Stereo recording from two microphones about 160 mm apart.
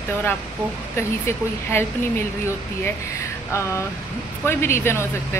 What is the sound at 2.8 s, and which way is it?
Speech, 15° left (ahead or behind).